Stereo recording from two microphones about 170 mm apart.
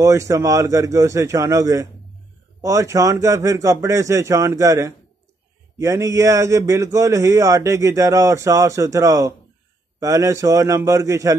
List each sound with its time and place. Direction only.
0.0 s a man's voice: 20° right (ahead or behind)